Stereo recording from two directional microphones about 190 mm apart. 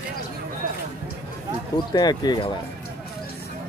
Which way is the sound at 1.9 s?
20° left (ahead or behind).